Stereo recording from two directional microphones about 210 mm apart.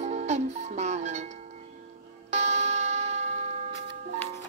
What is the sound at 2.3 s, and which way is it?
Clock, 35° right (ahead or behind).